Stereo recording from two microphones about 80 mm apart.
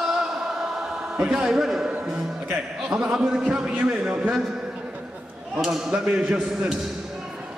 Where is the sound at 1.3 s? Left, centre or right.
Centre.